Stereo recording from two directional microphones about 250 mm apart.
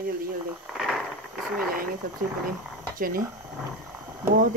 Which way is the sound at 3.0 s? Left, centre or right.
Right.